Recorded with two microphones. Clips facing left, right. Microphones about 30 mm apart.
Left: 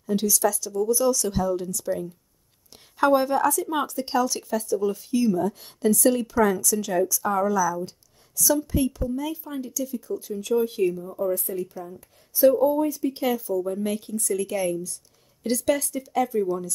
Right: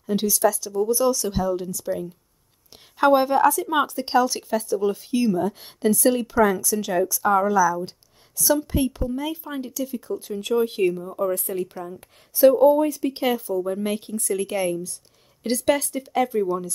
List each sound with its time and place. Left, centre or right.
0.0 s a woman's voice: right
13.2 s a woman's voice: right
16.4 s speech: right